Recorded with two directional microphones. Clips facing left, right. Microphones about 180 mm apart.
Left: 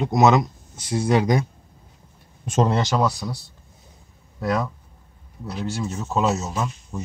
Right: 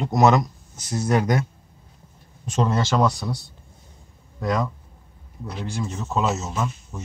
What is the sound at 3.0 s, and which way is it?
Speech, centre (ahead or behind).